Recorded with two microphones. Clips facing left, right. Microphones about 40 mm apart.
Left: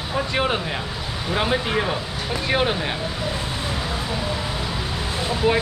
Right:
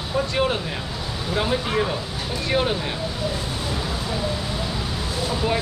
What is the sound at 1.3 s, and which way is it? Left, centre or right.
Speech, left.